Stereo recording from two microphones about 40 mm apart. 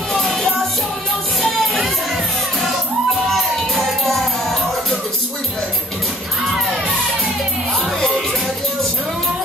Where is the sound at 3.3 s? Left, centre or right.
Centre.